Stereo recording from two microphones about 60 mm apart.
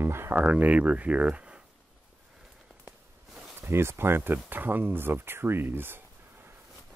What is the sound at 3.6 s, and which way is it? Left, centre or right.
Speech, right.